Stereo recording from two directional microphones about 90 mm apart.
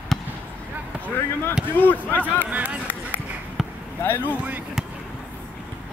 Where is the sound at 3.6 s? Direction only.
5° right (ahead or behind).